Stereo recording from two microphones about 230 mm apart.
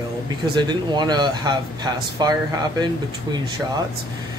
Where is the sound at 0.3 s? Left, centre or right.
Centre.